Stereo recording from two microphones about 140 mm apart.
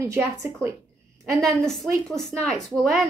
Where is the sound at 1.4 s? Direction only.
Centre (ahead or behind).